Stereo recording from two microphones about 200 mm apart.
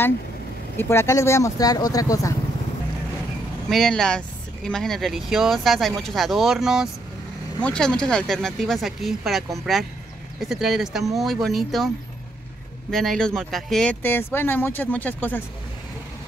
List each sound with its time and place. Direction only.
0.7 s speech: 10° left (ahead or behind)
3.7 s speech: centre (ahead or behind)
12.9 s speech: centre (ahead or behind)